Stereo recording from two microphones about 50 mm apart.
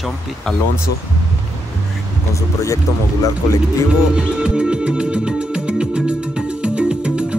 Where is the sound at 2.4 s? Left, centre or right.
Left.